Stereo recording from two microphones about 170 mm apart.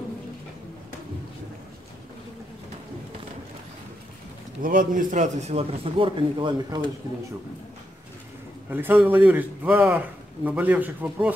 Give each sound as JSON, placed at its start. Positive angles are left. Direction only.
{"t": 4.6, "sound": "a man's voice", "side_deg": -50}
{"t": 8.6, "sound": "a man's voice", "side_deg": -10}